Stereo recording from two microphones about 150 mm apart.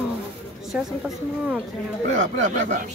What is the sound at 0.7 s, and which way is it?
Speech, 5° right (ahead or behind).